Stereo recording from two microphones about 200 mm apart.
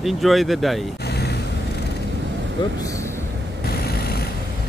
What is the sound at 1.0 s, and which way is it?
Vehicle, 55° left (ahead or behind).